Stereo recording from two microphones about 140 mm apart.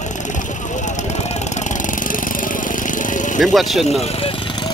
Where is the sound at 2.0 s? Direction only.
75° left (ahead or behind).